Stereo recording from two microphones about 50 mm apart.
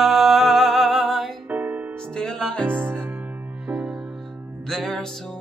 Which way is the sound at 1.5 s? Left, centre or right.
Right.